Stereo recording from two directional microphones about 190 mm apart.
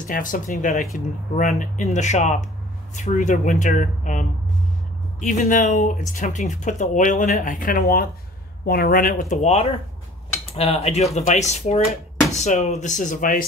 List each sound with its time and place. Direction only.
0.0 s speech: 45° left (ahead or behind)